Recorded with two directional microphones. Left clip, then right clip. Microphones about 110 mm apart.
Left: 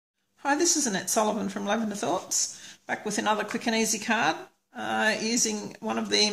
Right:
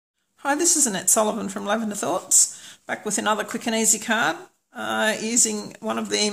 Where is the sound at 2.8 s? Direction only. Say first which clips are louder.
Right 3 dB; 35° right (ahead or behind).